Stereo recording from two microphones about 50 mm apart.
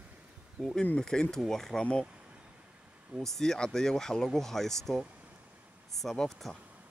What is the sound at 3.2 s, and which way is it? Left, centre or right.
Speech, centre.